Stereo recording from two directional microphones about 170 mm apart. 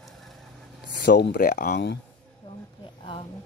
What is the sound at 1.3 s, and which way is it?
Speech, 55° left (ahead or behind).